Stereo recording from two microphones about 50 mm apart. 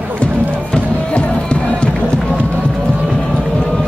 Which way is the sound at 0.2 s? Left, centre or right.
Left.